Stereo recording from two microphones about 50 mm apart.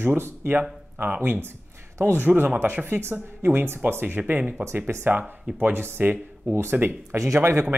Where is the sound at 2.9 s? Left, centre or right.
Right.